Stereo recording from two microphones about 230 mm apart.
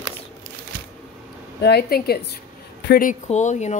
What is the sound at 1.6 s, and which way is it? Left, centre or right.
Speech, left.